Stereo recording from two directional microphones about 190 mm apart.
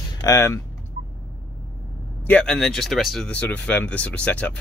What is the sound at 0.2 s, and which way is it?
Speech, 15° left (ahead or behind).